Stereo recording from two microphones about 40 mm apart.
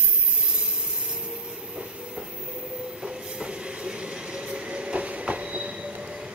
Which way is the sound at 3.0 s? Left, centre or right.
Centre.